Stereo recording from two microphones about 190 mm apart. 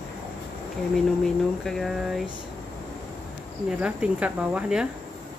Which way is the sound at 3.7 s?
5° right (ahead or behind).